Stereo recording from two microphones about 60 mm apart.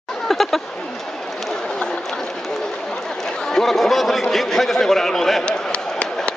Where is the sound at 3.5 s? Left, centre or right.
Centre.